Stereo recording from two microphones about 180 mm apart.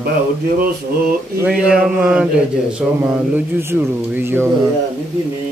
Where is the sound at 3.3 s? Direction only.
15° right (ahead or behind).